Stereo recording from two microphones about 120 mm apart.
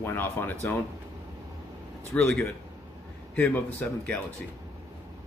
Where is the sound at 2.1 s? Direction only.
15° left (ahead or behind).